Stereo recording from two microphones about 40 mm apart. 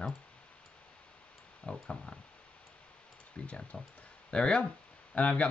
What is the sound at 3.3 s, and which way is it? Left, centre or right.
Speech, left.